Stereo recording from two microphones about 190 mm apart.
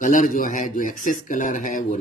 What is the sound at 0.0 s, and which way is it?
Speech, 45° left (ahead or behind).